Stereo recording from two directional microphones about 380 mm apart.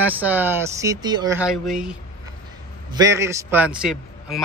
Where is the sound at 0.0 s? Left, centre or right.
Centre.